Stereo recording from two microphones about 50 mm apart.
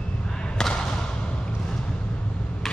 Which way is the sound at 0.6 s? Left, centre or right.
Centre.